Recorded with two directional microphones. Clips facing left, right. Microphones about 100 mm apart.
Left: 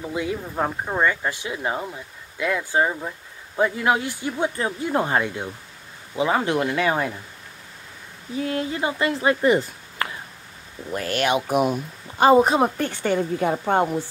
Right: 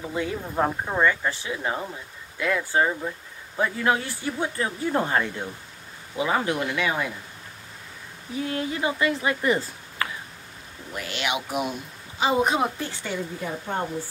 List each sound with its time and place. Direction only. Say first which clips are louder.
0.1 s speech: left 1 dB; 10° left (ahead or behind); by 7.1 s 35° left (ahead or behind)
8.5 s speech: left 2 dB; 30° left (ahead or behind)
11.0 s speech: left 6 dB; 45° left (ahead or behind)
12.4 s a woman's voice: left 5 dB; 35° left (ahead or behind)
12.8 s speech: left 8 dB; 55° left (ahead or behind); by 13.8 s 90° left